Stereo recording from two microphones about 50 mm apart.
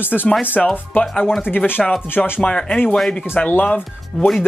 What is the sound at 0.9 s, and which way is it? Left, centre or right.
Speech, left.